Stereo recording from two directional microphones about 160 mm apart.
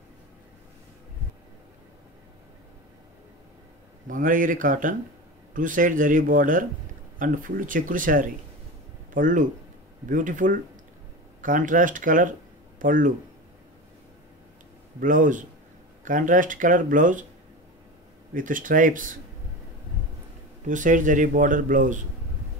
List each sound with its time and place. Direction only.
4.1 s speech: 55° right (ahead or behind)
15.0 s speech: 55° right (ahead or behind)
18.3 s speech: 55° right (ahead or behind)
20.6 s speech: 55° right (ahead or behind)